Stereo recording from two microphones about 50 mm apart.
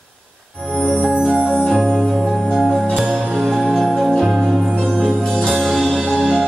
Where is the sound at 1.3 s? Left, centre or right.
Centre.